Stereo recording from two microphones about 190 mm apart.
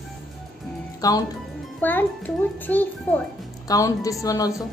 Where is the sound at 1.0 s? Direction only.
20° left (ahead or behind).